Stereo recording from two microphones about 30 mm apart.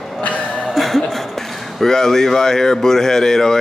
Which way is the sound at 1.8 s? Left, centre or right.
Centre.